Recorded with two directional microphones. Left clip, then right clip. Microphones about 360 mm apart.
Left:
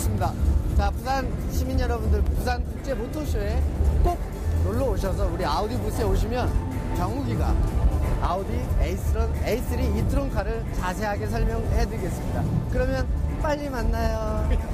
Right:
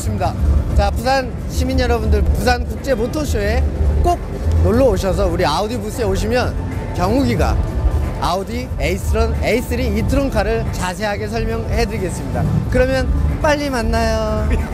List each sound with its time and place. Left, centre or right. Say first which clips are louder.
0.7 s speech: right 10 dB; centre
8.8 s speech: right 14 dB; right